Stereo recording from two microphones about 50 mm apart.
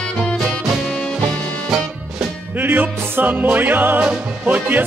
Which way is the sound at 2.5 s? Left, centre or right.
Right.